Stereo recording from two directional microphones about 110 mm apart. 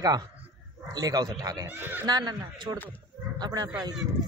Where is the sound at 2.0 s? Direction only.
40° right (ahead or behind).